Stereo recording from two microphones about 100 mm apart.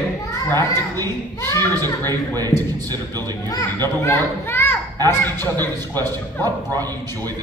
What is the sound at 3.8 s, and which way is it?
A child's voice, 25° left (ahead or behind).